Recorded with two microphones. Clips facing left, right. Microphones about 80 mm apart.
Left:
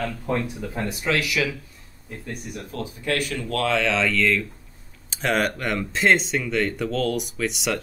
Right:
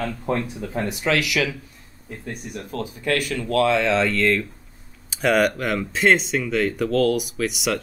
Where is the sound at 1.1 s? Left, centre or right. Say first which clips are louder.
Right 1 dB; left.